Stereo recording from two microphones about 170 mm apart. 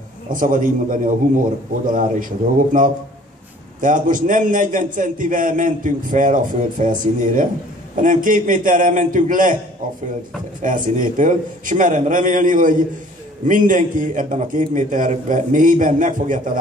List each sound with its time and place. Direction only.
0.3 s a man's voice: 50° right (ahead or behind)
10.6 s a man's voice: 50° right (ahead or behind)